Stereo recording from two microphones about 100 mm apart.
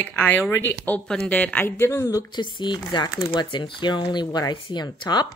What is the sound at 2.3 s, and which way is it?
Speech, 50° left (ahead or behind).